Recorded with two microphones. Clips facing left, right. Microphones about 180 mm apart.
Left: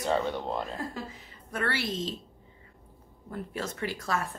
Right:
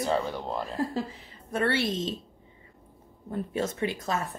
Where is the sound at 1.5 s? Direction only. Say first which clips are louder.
Right 5 dB; 25° right (ahead or behind).